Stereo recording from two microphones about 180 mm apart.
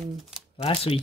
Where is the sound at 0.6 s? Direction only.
30° left (ahead or behind).